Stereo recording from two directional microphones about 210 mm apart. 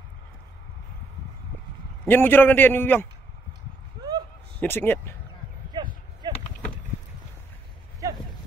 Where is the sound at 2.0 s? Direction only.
10° left (ahead or behind).